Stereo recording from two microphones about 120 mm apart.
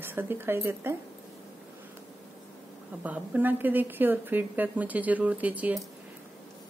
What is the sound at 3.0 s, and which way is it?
A woman's voice, 15° right (ahead or behind).